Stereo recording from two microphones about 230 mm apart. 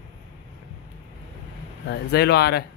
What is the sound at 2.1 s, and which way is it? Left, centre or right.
Speech, left.